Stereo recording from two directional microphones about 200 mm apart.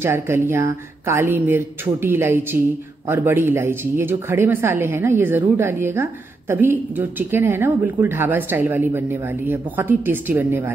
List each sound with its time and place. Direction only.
0.0 s speech: 10° right (ahead or behind)